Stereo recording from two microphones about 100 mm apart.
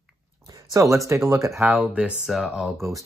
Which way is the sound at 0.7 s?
30° right (ahead or behind).